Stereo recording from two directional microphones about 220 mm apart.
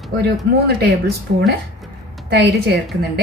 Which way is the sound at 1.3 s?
45° right (ahead or behind).